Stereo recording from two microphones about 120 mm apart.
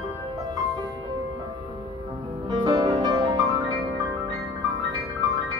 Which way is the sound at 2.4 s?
35° right (ahead or behind).